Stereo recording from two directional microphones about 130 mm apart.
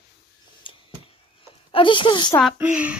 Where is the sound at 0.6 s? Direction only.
40° left (ahead or behind).